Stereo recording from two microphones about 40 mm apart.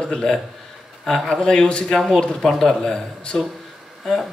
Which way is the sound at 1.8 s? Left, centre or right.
Centre.